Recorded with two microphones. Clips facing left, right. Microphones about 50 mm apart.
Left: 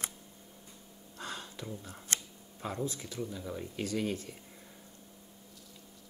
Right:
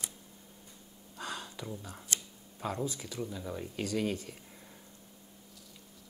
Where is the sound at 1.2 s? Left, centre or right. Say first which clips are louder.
Right 1 dB; centre.